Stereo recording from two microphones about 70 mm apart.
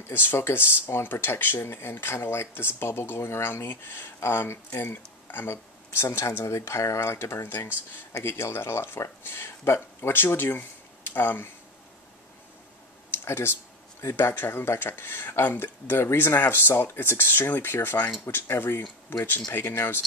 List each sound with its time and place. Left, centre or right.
0.1 s speech: left
13.1 s a sound: left
14.1 s speech: left